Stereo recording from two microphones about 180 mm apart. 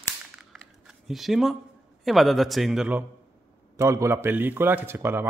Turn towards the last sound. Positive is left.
turn(degrees=-10)  # may be behind; listen again after turning